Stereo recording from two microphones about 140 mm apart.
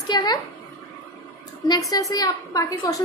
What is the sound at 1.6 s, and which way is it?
A woman's voice, 30° left (ahead or behind).